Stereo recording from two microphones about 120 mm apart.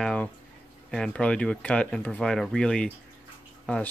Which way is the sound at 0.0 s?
10° left (ahead or behind).